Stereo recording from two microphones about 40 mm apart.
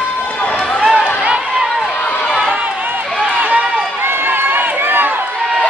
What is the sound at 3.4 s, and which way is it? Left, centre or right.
Run, right.